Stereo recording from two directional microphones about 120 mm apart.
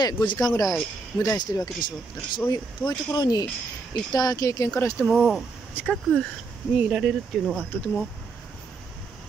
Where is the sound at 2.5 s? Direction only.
35° left (ahead or behind).